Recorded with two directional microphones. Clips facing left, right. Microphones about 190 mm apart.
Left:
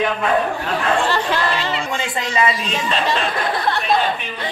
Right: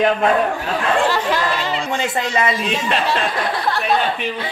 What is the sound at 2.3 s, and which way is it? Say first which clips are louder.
Speech: left 2 dB; 50° right (ahead or behind).